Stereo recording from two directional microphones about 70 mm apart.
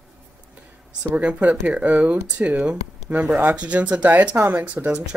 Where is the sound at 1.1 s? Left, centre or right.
Centre.